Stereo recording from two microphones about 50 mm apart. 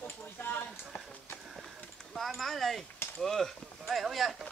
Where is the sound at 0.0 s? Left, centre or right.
Left.